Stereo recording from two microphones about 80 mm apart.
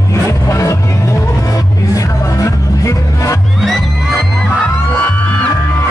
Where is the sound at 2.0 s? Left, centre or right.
Left.